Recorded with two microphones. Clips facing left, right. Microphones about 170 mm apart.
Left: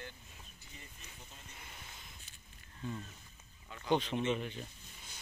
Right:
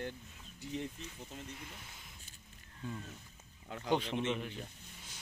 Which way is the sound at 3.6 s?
70° right (ahead or behind).